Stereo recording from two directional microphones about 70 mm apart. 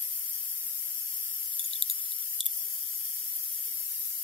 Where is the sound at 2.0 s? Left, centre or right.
Left.